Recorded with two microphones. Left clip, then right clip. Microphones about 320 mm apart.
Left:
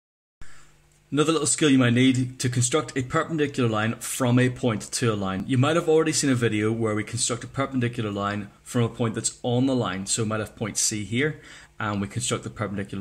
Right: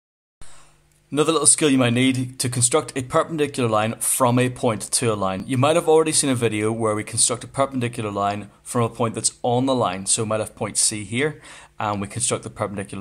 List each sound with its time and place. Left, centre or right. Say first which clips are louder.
1.1 s a man's voice: right 4 dB; centre
9.4 s speech: right 5 dB; right
9.8 s a man's voice: right 5 dB; centre